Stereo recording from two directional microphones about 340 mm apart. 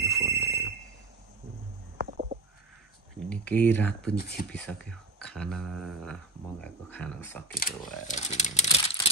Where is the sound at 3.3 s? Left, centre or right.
Centre.